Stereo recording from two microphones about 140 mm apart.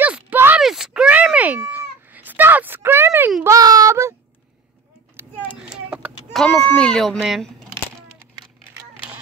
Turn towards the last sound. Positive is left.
turn(degrees=0)  # may be behind; listen again after turning